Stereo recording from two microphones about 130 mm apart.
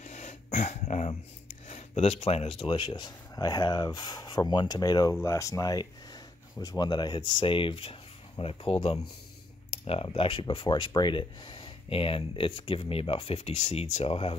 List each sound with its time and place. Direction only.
0.0 s throat clearing: 65° left (ahead or behind)
1.7 s speech: 55° left (ahead or behind)